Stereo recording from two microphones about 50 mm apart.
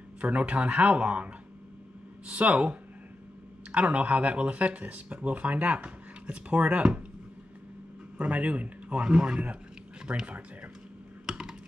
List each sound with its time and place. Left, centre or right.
0.2 s speech: right
8.2 s speech: right
11.2 s computer keyboard: centre